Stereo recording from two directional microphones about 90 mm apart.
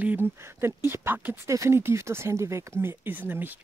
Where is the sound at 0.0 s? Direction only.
20° right (ahead or behind).